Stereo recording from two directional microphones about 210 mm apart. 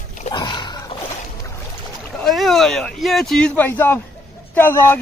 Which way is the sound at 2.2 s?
Centre (ahead or behind).